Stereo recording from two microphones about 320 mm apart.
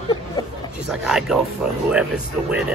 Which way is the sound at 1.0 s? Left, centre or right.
Centre.